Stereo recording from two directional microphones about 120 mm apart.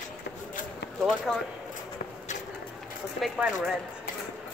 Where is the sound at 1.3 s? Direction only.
5° left (ahead or behind).